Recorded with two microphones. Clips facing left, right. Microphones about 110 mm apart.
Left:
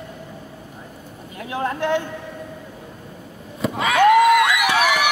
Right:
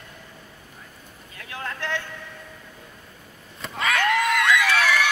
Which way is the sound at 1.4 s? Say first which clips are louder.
Left 9 dB; 25° left (ahead or behind).